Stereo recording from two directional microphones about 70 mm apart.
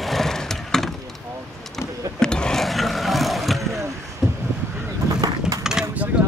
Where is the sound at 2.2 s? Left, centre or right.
Centre.